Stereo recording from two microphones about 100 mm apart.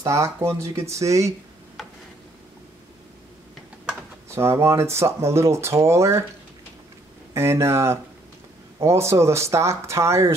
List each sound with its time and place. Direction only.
0.0 s speech: 30° right (ahead or behind)
4.4 s speech: 25° right (ahead or behind)
7.3 s speech: 25° right (ahead or behind)